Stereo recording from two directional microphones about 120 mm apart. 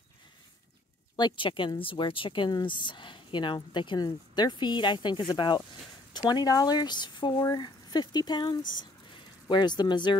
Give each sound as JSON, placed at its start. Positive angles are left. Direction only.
{"t": 1.1, "sound": "speech", "side_deg": 40}